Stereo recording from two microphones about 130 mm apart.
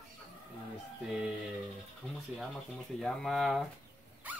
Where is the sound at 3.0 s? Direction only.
Centre (ahead or behind).